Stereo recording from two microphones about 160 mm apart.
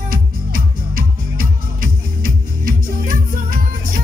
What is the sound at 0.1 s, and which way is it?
Music, 65° right (ahead or behind).